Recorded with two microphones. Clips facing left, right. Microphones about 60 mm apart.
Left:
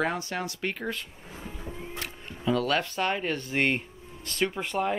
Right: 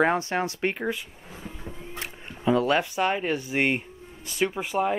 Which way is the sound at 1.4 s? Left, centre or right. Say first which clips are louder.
Left 1 dB; centre.